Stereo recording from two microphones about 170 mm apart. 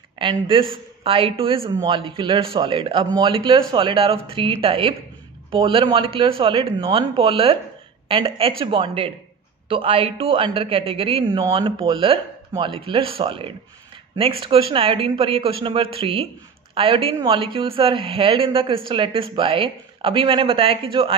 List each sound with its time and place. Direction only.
0.2 s a man's voice: 30° right (ahead or behind)
1.7 s a man's voice: 20° right (ahead or behind)